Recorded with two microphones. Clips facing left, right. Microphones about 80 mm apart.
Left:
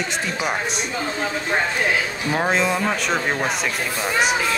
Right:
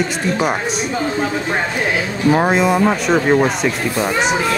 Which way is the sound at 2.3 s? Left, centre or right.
Centre.